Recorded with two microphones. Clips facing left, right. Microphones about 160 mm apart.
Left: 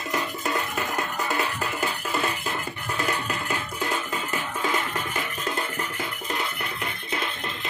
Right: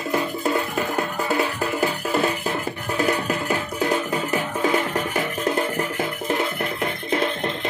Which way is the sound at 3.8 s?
40° right (ahead or behind).